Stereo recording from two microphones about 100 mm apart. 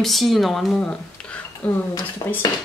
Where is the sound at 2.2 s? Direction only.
50° left (ahead or behind).